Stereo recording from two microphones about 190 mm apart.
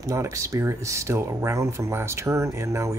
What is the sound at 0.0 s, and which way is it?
Speech, 15° right (ahead or behind).